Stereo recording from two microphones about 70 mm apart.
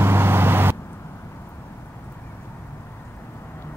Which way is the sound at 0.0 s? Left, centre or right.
Right.